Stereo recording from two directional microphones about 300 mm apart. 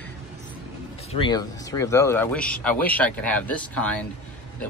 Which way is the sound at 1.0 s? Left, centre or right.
Centre.